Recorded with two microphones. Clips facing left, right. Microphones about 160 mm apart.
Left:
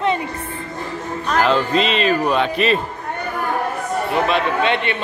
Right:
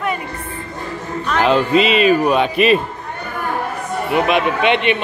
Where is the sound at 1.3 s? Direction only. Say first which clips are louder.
Right 3 dB; 15° right (ahead or behind).